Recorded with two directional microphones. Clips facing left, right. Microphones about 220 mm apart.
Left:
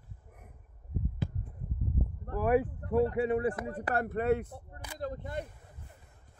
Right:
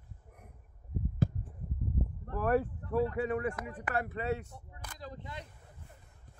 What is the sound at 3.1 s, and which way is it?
Speech, 25° left (ahead or behind).